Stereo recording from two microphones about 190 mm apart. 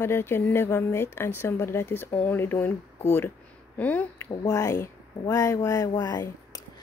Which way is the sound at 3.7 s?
10° left (ahead or behind).